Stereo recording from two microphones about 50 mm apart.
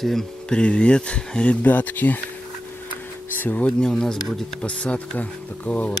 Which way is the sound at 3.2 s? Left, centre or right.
Left.